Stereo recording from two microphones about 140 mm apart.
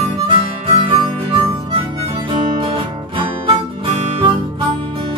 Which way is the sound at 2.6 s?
40° right (ahead or behind).